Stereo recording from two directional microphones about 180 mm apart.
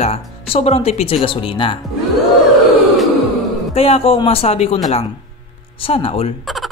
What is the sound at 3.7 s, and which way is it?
A man's voice, 30° left (ahead or behind).